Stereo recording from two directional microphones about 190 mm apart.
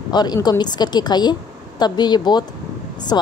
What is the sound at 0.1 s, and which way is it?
A woman's voice, 20° left (ahead or behind).